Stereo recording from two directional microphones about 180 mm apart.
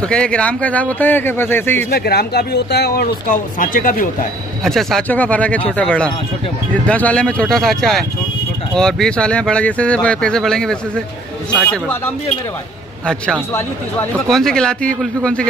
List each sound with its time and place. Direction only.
0.0 s speech: 5° left (ahead or behind)
1.9 s speech: 60° left (ahead or behind)
4.6 s speech: centre (ahead or behind)